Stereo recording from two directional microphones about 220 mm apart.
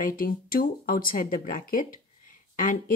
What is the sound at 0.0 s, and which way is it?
Speech, 40° left (ahead or behind).